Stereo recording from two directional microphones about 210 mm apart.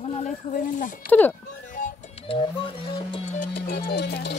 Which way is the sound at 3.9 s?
50° left (ahead or behind).